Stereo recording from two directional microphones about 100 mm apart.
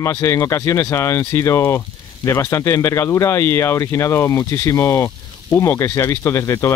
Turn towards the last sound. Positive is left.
turn(degrees=30)  # may be behind; listen again after turning